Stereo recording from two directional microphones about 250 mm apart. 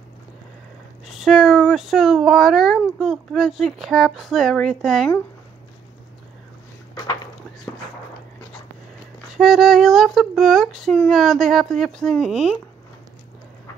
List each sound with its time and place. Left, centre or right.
1.0 s speech: centre
9.3 s speech: centre